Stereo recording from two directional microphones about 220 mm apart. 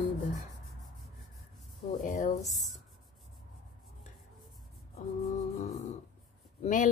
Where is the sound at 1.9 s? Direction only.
35° left (ahead or behind).